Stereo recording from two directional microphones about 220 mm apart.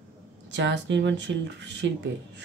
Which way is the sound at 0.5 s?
55° right (ahead or behind).